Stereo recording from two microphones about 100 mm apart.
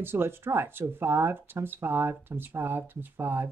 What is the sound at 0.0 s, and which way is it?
Speech, 25° right (ahead or behind).